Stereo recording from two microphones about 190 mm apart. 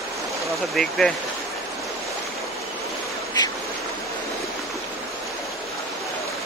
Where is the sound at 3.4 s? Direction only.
20° left (ahead or behind).